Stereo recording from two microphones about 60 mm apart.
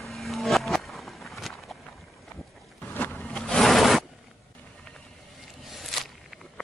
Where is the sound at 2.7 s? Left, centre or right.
Left.